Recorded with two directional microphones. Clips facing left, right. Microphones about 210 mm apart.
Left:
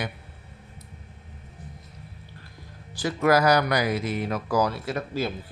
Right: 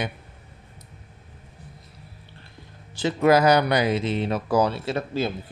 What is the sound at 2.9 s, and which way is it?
Speech, 25° right (ahead or behind).